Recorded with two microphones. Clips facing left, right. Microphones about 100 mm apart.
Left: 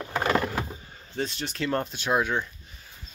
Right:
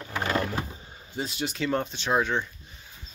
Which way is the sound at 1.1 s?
10° right (ahead or behind).